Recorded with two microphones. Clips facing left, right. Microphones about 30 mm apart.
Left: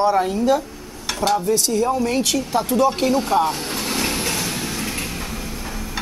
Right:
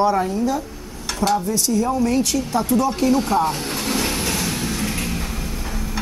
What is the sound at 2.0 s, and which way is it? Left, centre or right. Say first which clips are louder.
Speech: right 1 dB; left.